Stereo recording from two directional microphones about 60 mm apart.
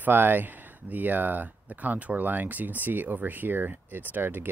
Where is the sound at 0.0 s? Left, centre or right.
Right.